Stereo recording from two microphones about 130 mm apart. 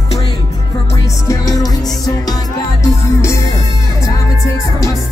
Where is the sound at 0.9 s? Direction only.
25° left (ahead or behind).